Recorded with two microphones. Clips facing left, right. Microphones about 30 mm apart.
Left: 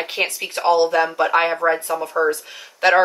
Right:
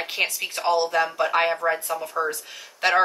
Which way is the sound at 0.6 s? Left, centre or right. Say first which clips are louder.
Left 6 dB; left.